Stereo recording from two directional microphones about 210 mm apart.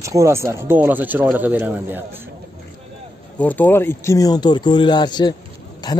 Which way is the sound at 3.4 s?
10° left (ahead or behind).